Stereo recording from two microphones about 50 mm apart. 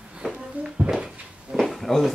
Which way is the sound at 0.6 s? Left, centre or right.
Right.